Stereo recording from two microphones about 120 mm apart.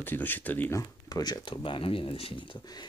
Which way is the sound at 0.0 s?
15° left (ahead or behind).